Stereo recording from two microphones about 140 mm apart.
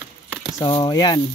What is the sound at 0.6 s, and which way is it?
Speech, 35° left (ahead or behind).